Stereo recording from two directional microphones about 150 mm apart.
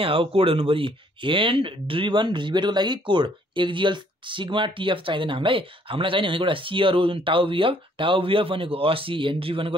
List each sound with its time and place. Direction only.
0.0 s speech: 35° right (ahead or behind)